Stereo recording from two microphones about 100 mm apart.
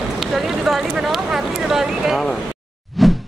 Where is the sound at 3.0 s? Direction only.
Centre (ahead or behind).